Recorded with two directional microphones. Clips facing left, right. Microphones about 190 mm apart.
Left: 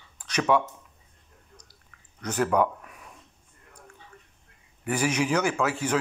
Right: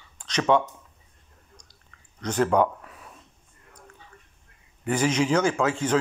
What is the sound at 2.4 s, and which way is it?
Speech, 25° right (ahead or behind).